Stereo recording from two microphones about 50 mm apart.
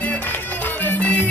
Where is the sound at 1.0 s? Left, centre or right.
Left.